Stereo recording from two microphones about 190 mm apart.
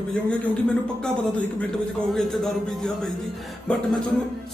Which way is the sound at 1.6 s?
Centre (ahead or behind).